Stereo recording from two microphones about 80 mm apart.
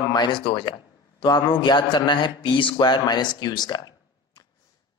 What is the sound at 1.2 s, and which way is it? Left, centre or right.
A man's voice, left.